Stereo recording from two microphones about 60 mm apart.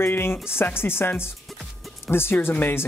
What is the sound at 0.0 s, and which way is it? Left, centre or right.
Speech, left.